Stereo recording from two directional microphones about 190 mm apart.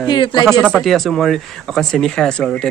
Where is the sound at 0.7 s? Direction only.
Centre (ahead or behind).